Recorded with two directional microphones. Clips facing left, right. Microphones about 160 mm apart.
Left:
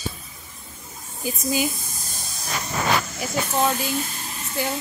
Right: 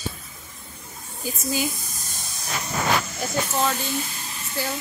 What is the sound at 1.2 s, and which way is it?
Speech, 15° left (ahead or behind).